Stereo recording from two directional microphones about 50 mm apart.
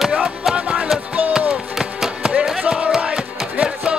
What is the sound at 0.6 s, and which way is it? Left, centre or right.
Music, right.